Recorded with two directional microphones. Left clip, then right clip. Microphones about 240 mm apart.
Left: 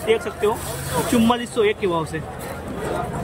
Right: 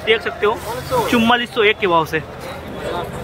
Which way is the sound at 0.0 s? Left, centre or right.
Centre.